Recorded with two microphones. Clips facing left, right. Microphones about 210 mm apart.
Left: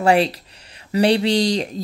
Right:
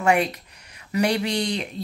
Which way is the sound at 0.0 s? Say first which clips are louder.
Left 4 dB; 30° left (ahead or behind).